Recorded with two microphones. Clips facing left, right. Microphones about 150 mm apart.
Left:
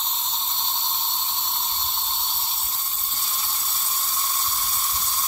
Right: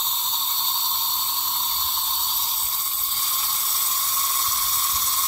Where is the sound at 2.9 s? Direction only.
10° right (ahead or behind).